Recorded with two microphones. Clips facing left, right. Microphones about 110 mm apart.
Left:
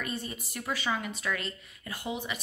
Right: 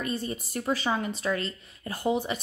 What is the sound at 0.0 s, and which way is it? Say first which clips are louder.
A woman's voice: right 5 dB; 35° right (ahead or behind).